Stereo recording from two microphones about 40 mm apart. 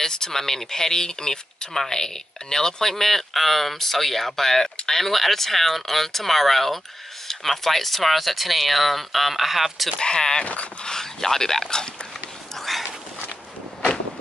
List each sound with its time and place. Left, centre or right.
0.0 s speech: centre
9.9 s speech: centre
10.4 s speech: left
10.8 s speech: centre
12.5 s a sound: centre